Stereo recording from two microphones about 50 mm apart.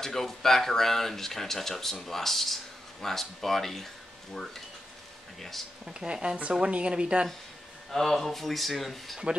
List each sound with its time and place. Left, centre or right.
0.0 s speech: centre
5.9 s speech: centre
7.9 s speech: centre